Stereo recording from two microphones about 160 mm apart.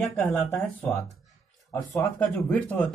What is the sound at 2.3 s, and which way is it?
Speech, 10° left (ahead or behind).